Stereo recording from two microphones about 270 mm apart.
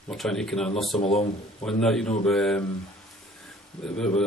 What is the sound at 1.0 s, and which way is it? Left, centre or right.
Speech, left.